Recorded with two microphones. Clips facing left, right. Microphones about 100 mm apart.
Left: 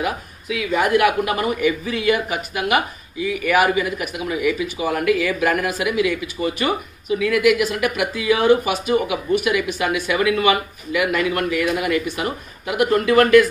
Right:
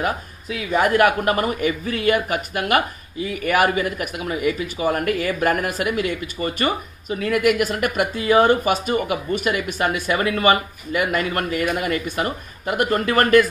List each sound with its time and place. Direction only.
0.0 s speech: 40° right (ahead or behind)